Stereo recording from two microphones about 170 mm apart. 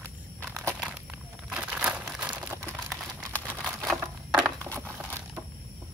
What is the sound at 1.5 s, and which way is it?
Crumpling, 5° right (ahead or behind).